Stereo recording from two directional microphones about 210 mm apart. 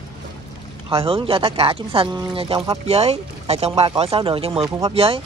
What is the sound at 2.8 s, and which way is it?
Speech, 30° right (ahead or behind).